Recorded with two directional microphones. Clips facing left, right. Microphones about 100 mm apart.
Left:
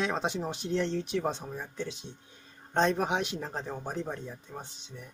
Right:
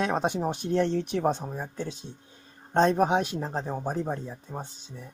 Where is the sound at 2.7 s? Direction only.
35° right (ahead or behind).